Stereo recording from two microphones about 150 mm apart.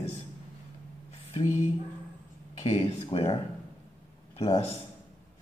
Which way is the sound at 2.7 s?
40° left (ahead or behind).